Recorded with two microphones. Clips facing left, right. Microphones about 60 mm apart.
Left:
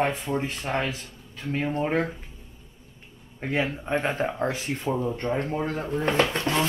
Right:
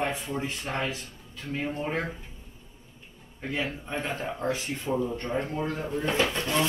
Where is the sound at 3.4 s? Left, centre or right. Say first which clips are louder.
Left 5 dB; left.